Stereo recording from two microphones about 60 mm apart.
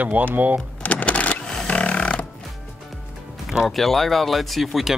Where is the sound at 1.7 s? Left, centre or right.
Centre.